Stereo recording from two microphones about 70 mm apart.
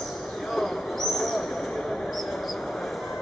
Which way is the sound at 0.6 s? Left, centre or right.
Centre.